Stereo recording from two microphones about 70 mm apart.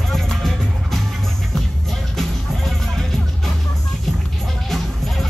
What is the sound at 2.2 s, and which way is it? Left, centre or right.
Music, centre.